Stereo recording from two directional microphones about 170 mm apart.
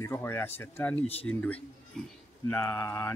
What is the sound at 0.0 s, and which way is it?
A man's voice, 15° left (ahead or behind).